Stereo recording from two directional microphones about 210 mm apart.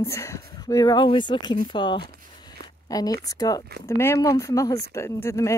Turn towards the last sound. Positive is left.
turn(degrees=15)  # may be behind; listen again after turning